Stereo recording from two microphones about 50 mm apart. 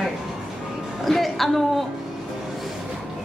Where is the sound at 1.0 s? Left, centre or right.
Centre.